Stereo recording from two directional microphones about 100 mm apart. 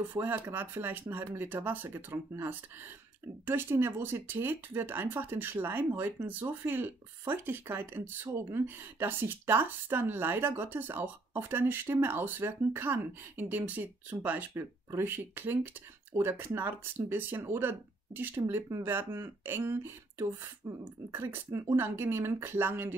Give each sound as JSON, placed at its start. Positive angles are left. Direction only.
{"t": 0.1, "sound": "speech", "side_deg": -20}